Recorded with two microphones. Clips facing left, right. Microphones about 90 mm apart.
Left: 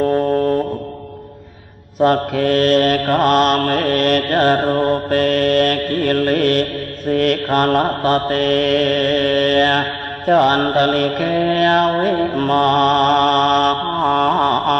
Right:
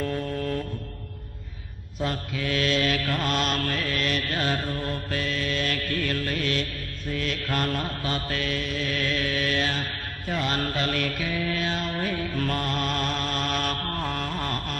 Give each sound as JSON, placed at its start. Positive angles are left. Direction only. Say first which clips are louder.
{"t": 0.0, "sound": "music", "louder": "left 13 dB", "side_deg": 50}
{"t": 2.0, "sound": "mantra", "louder": "left 15 dB", "side_deg": 60}